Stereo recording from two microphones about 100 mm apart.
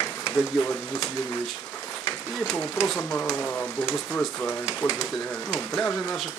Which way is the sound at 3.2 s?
5° left (ahead or behind).